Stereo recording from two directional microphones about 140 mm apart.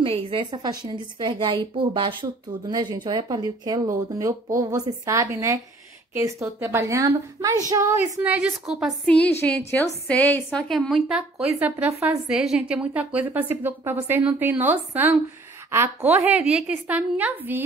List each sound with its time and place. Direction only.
0.0 s a woman's voice: 40° right (ahead or behind); by 8.9 s 5° right (ahead or behind)
9.0 s a woman's voice: 10° left (ahead or behind)
10.7 s a woman's voice: centre (ahead or behind); by 16.3 s 15° right (ahead or behind)
16.3 s a woman's voice: 5° right (ahead or behind)